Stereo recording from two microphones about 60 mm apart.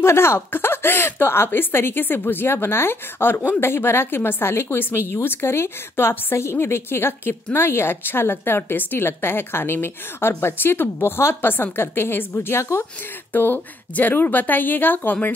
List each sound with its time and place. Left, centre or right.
0.0 s a woman's voice: left
13.3 s a woman's voice: left